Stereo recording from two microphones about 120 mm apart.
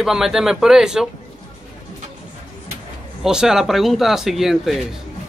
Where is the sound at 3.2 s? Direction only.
5° right (ahead or behind).